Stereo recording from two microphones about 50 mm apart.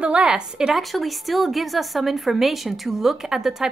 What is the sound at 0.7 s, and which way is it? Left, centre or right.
A woman's voice, centre.